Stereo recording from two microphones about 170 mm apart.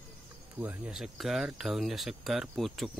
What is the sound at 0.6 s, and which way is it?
Speech, 10° right (ahead or behind).